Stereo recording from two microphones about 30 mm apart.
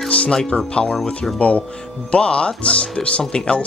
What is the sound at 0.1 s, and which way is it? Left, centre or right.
Speech, left.